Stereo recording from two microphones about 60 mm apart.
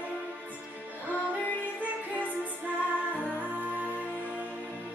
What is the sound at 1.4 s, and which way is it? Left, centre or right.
Music, left.